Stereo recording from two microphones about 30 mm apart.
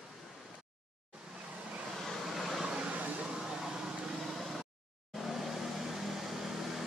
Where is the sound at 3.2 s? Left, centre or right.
Centre.